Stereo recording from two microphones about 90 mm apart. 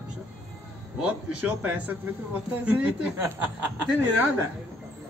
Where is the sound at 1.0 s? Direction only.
20° right (ahead or behind).